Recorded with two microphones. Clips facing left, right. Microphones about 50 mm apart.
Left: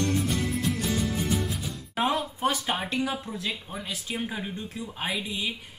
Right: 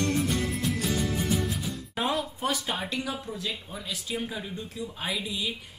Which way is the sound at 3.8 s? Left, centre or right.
Left.